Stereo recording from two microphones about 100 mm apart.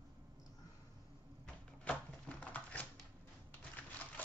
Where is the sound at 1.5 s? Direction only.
10° left (ahead or behind).